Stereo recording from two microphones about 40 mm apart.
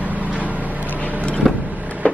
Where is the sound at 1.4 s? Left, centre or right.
Centre.